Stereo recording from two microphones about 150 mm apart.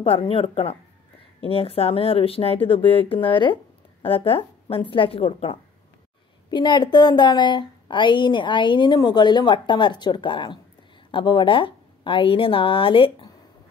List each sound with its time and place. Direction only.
0.0 s a woman's voice: 40° left (ahead or behind)